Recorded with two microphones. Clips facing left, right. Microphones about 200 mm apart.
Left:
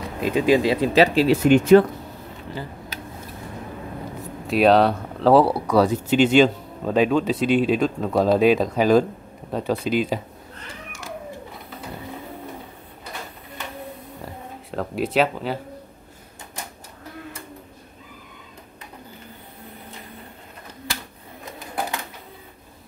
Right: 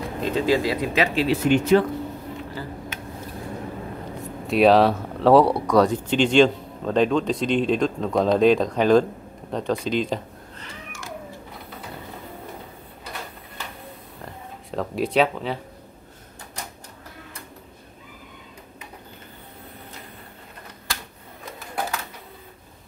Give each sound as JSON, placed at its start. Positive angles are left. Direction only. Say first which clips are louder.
{"t": 0.0, "sound": "speech", "louder": "left 2 dB", "side_deg": 10}
{"t": 2.9, "sound": "a sound", "louder": "left 1 dB", "side_deg": 35}
{"t": 4.5, "sound": "speech", "louder": "even", "side_deg": 0}
{"t": 14.2, "sound": "speech", "louder": "even", "side_deg": 0}